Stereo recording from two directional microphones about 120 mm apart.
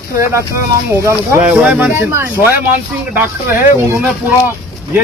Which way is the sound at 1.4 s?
10° right (ahead or behind).